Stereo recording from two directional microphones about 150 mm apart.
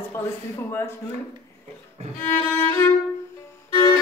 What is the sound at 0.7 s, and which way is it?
Speech, 15° left (ahead or behind).